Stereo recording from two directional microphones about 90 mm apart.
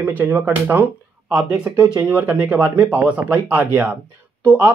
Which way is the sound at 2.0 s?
15° right (ahead or behind).